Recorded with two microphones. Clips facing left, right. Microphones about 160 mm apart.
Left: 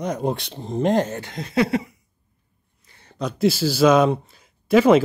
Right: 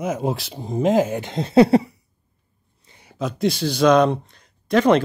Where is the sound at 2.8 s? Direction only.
15° right (ahead or behind).